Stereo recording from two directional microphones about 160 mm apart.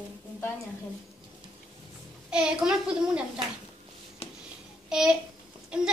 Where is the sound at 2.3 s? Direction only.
5° right (ahead or behind).